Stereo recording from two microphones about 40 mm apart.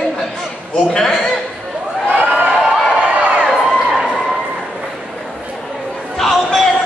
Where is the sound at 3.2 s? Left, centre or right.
Right.